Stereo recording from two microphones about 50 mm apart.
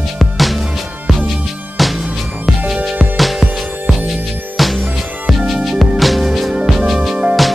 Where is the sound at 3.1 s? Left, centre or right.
Centre.